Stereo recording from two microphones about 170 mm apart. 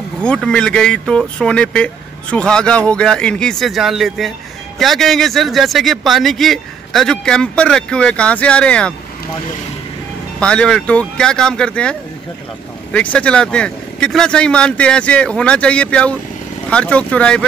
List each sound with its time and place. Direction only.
0.2 s speech: 5° left (ahead or behind)
10.4 s speech: 5° left (ahead or behind)